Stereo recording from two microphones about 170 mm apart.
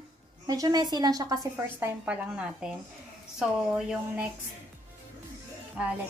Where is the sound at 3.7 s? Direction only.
5° right (ahead or behind).